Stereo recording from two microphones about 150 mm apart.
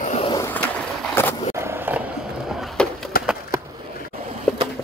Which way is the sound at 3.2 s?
90° left.